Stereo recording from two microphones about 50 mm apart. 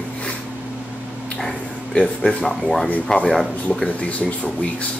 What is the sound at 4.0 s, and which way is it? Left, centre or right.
Speech, left.